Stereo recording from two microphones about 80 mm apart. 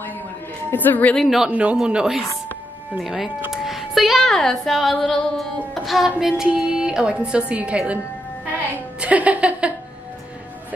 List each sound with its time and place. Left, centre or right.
0.7 s a woman's voice: left
1.1 s a man's voice: centre
1.5 s a woman's voice: centre
3.6 s music: centre
5.9 s a woman's voice: centre
9.0 s speech: centre